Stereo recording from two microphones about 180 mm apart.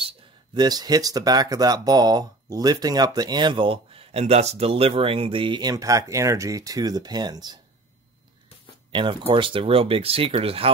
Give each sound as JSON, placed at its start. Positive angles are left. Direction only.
{"t": 0.6, "sound": "speech", "side_deg": -20}
{"t": 8.9, "sound": "speech", "side_deg": -30}